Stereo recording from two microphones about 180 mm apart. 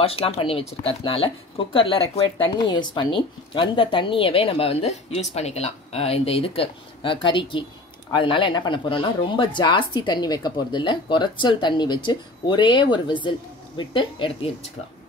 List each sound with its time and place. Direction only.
0.0 s speech: 30° left (ahead or behind)